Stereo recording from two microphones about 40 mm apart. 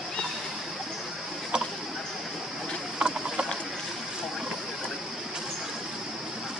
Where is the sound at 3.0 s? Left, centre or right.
Centre.